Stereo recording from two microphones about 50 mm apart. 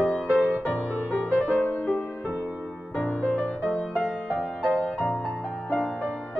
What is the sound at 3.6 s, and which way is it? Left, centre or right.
Music, left.